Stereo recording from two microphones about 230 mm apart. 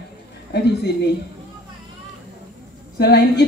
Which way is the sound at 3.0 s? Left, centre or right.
Left.